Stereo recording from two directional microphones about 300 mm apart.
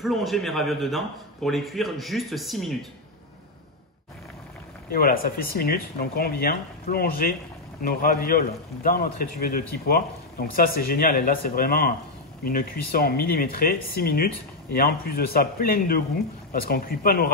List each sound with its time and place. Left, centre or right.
0.0 s speech: centre
4.9 s speech: left